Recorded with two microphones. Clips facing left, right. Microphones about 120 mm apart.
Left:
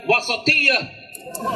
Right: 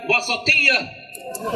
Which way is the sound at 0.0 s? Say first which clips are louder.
Left 3 dB; 25° left (ahead or behind).